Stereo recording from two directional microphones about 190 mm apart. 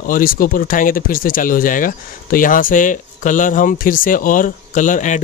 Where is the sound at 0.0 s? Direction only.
45° left (ahead or behind).